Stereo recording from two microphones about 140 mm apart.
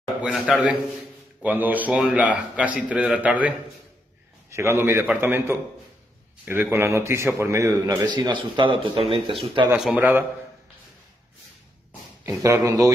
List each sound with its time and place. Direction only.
0.2 s a man's voice: 5° right (ahead or behind); by 9.2 s 40° right (ahead or behind)
9.7 s a man's voice: 10° right (ahead or behind)
12.3 s a man's voice: 20° right (ahead or behind)